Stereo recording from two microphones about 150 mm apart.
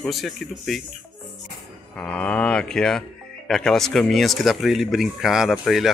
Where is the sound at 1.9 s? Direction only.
10° left (ahead or behind).